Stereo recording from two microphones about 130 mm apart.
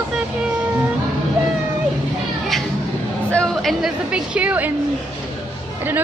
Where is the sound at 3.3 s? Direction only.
10° left (ahead or behind).